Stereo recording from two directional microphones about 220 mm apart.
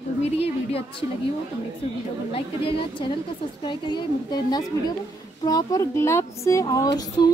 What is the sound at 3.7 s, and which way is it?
A woman's voice, 20° left (ahead or behind).